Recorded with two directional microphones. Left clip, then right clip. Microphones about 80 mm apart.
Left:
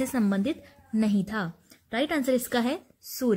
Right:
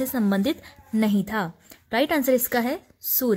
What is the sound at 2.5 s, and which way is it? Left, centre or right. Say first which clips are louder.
Speech: right 3 dB; right.